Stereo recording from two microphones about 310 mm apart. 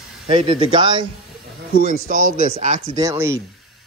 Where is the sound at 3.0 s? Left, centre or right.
Centre.